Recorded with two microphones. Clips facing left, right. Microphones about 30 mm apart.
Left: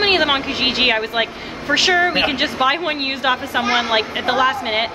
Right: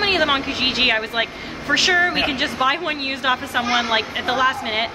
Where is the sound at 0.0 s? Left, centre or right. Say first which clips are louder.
Left 2 dB; centre.